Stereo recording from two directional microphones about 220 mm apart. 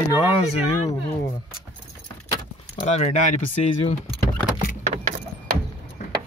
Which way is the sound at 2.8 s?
30° left (ahead or behind).